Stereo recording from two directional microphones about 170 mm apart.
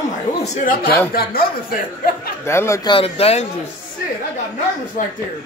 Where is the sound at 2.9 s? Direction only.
35° left (ahead or behind).